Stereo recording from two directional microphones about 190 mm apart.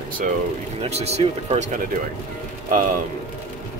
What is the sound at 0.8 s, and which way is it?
Speech, 35° right (ahead or behind).